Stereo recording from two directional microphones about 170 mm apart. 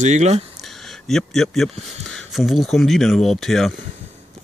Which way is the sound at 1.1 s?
Centre (ahead or behind).